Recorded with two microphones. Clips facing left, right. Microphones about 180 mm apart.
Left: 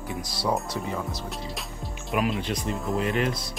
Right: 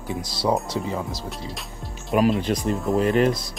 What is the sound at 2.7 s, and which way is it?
Speech, centre (ahead or behind).